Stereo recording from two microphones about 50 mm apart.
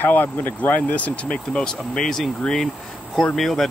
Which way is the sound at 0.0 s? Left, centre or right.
Left.